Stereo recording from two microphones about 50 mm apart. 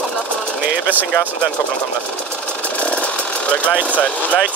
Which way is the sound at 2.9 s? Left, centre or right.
Left.